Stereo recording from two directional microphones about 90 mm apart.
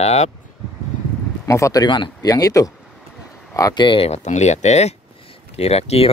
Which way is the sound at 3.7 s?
60° left (ahead or behind).